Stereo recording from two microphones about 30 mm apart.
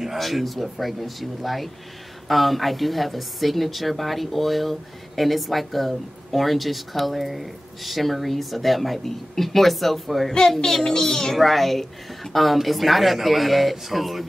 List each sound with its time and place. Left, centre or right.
0.0 s a woman's voice: centre
10.9 s a child's voice: centre
11.3 s a woman's voice: centre